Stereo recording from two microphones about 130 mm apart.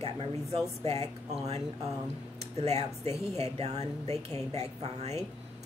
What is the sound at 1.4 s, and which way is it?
A woman's voice, 55° right (ahead or behind).